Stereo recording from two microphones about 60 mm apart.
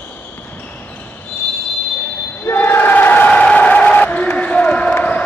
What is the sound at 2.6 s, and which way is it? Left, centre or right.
Battle cry, left.